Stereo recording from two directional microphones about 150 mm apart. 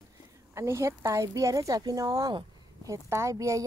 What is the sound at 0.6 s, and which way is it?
Speech, 20° right (ahead or behind).